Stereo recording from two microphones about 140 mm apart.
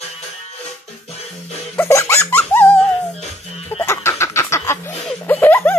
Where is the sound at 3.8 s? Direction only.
20° left (ahead or behind).